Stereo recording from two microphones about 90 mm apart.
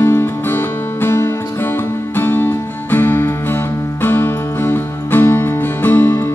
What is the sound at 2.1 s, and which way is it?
Music, 25° left (ahead or behind).